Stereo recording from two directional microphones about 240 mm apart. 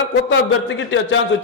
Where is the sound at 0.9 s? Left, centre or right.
Left.